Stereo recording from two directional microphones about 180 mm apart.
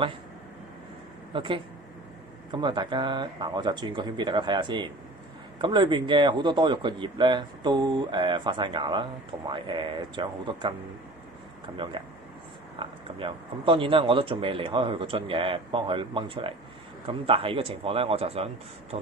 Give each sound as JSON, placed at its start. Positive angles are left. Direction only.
{"t": 1.3, "sound": "speech", "side_deg": -30}
{"t": 11.7, "sound": "a man's voice", "side_deg": -25}